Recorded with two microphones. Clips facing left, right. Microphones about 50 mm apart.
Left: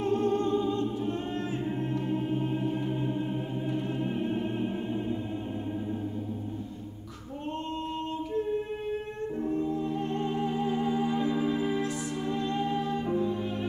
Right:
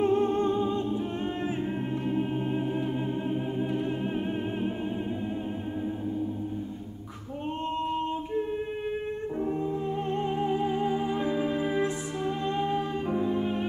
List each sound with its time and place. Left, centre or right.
0.0 s humming: right
2.0 s music: centre
9.4 s music: right